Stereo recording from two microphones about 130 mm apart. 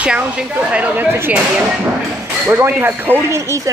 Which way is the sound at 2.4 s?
20° right (ahead or behind).